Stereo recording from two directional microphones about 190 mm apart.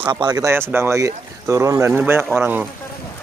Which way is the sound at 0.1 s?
20° right (ahead or behind).